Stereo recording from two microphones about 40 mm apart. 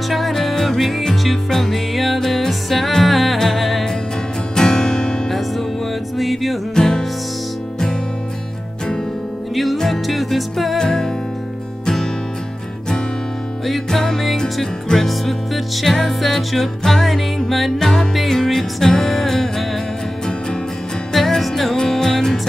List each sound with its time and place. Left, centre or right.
0.1 s music: centre
4.6 s music: centre
6.1 s music: centre
6.7 s music: centre
9.8 s music: centre
10.8 s music: centre
13.8 s music: centre
21.1 s music: centre